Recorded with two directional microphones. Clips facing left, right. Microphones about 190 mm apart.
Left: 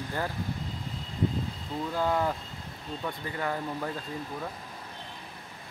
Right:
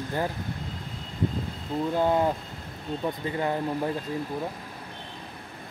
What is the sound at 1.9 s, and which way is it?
Speech, 20° right (ahead or behind).